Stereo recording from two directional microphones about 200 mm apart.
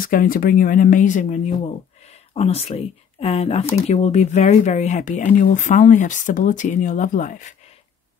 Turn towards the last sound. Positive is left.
turn(degrees=40)  # may be behind; listen again after turning